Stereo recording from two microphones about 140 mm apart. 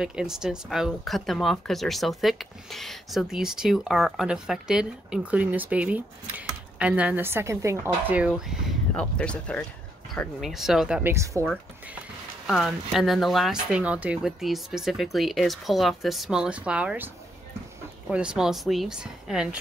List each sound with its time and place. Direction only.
0.0 s speech: 5° right (ahead or behind)
8.9 s speech: 10° left (ahead or behind)
10.4 s speech: centre (ahead or behind)
11.0 s speech: 20° right (ahead or behind)
12.4 s speech: centre (ahead or behind)
18.1 s speech: 5° right (ahead or behind)